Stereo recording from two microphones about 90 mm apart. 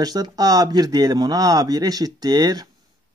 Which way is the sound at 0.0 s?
45° right (ahead or behind).